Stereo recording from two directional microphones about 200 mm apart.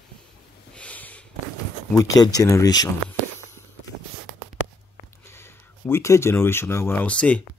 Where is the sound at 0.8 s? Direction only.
5° left (ahead or behind).